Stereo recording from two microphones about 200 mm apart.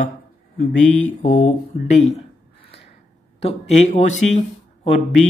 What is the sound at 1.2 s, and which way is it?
Speech, 40° left (ahead or behind).